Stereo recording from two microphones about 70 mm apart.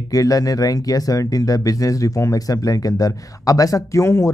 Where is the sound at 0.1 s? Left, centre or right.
Left.